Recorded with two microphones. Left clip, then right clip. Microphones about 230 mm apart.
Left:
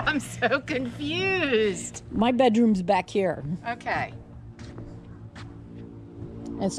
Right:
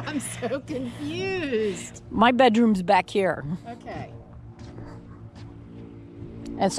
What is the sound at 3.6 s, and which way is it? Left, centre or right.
Speech, left.